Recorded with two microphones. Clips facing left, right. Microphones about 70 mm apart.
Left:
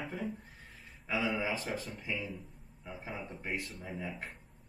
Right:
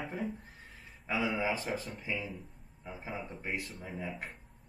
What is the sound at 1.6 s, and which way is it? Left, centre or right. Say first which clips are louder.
Speech: right 1 dB; centre.